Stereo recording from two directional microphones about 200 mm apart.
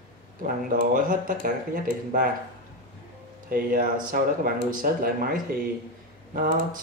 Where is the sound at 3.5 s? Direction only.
45° right (ahead or behind).